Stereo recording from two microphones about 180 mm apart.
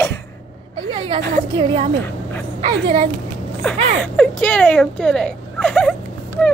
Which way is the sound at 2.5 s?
35° right (ahead or behind).